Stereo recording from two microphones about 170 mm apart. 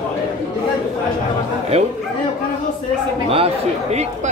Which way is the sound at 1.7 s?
35° right (ahead or behind).